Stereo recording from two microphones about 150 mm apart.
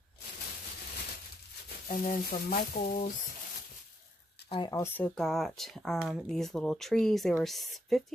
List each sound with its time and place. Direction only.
1.9 s a sound: 70° left (ahead or behind); by 3.0 s 90° left
4.5 s speech: 35° left (ahead or behind)
4.7 s speech: 15° left (ahead or behind)